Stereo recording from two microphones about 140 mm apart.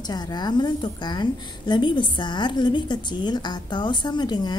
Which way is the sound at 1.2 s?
35° left (ahead or behind).